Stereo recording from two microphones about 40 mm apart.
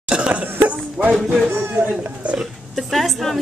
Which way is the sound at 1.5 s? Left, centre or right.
Right.